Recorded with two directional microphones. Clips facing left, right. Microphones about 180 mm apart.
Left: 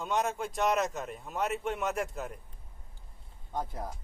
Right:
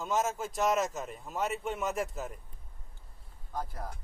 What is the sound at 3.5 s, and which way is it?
Speech, 25° left (ahead or behind).